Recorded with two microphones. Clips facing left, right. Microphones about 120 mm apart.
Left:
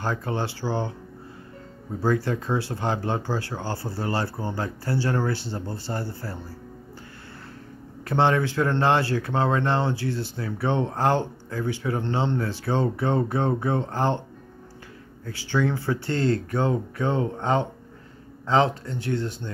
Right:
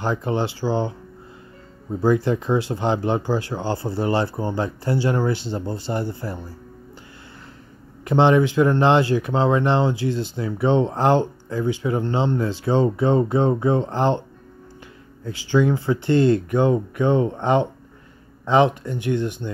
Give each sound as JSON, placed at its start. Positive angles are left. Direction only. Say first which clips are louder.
{"t": 0.0, "sound": "speech", "louder": "right 5 dB", "side_deg": -20}
{"t": 2.0, "sound": "speech", "louder": "right 5 dB", "side_deg": -20}
{"t": 8.0, "sound": "speech", "louder": "right 5 dB", "side_deg": -20}
{"t": 15.2, "sound": "speech", "louder": "right 6 dB", "side_deg": -15}